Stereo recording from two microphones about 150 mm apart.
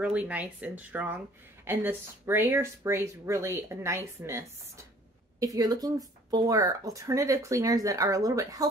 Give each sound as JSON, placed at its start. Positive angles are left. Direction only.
{"t": 0.0, "sound": "speech", "side_deg": -10}